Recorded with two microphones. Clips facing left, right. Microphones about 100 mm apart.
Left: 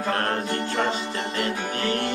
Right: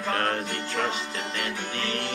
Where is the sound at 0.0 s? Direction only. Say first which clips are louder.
Left 2 dB; 35° left (ahead or behind).